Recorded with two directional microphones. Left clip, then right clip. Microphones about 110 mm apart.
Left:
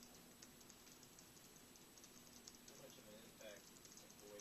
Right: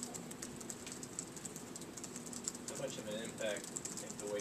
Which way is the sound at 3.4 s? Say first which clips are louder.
Right 19 dB; 15° left (ahead or behind).